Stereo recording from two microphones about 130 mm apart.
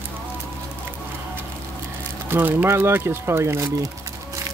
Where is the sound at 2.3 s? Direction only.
15° right (ahead or behind).